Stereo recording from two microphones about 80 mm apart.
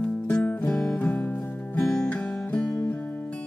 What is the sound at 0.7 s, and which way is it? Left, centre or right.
Music, centre.